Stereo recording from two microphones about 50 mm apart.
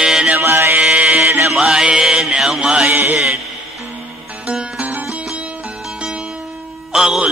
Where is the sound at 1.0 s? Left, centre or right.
Centre.